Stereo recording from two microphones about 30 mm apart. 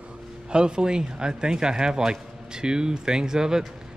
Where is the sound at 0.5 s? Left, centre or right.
Right.